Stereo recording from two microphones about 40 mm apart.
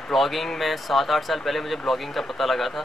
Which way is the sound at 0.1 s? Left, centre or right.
Centre.